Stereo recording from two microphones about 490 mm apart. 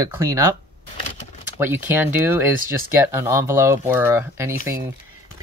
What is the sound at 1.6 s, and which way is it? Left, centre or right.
Speech, centre.